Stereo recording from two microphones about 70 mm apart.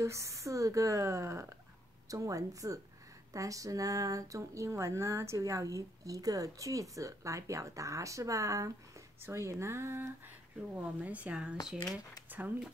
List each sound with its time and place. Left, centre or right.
0.0 s speech: right
10.7 s a woman's voice: right